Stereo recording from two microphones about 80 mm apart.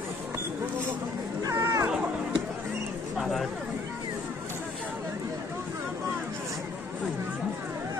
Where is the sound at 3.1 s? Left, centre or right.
Centre.